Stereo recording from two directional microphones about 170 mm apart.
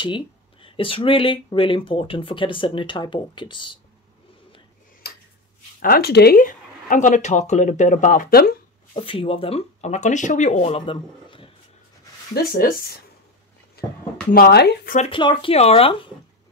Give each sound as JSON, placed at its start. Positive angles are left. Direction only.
{"t": 0.0, "sound": "speech", "side_deg": 30}
{"t": 5.0, "sound": "tick-tock", "side_deg": 65}
{"t": 5.8, "sound": "speech", "side_deg": 60}
{"t": 8.9, "sound": "speech", "side_deg": 35}
{"t": 12.4, "sound": "speech", "side_deg": 60}
{"t": 13.8, "sound": "a sound", "side_deg": 65}
{"t": 14.3, "sound": "speech", "side_deg": 65}
{"t": 15.0, "sound": "speech", "side_deg": 30}